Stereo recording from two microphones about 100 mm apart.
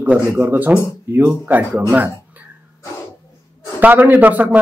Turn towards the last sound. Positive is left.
turn(degrees=-15)  # may be behind; listen again after turning